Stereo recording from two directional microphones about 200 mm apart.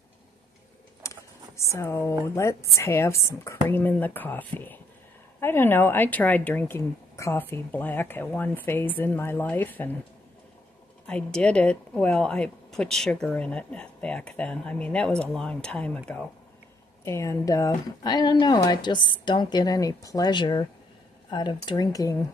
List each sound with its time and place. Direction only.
1.0 s a sound: 15° left (ahead or behind)
1.6 s speech: 15° left (ahead or behind)
11.1 s a woman's voice: 5° left (ahead or behind)